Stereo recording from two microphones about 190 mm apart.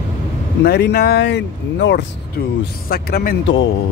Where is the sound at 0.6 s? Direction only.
60° left (ahead or behind).